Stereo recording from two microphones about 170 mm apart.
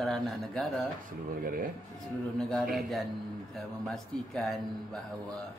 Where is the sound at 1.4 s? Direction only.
55° right (ahead or behind).